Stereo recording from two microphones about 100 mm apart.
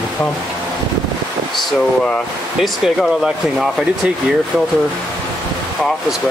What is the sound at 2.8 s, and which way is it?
Speech, 5° right (ahead or behind).